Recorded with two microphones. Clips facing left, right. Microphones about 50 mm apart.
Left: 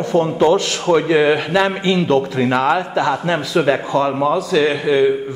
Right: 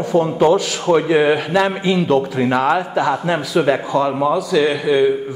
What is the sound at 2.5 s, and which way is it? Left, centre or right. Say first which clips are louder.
Speech: even; centre.